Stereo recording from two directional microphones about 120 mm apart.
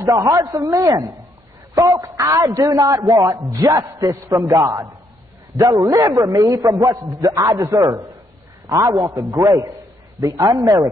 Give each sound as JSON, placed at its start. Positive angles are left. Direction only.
{"t": 0.0, "sound": "a man's voice", "side_deg": -30}